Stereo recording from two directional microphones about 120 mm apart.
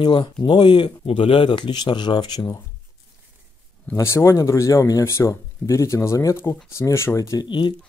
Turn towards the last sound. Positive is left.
turn(degrees=40)  # may be behind; listen again after turning